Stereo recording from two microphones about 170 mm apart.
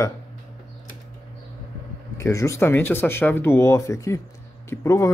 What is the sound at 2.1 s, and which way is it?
Speech, 15° left (ahead or behind).